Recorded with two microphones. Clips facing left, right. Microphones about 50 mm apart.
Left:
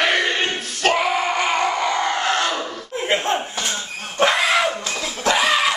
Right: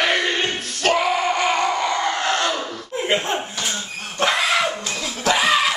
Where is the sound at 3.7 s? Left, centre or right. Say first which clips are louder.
Left 1 dB; centre.